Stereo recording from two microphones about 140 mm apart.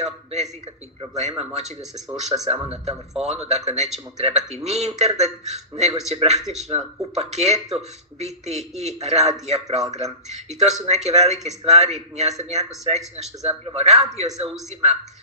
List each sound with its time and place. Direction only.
0.0 s speech: 50° right (ahead or behind)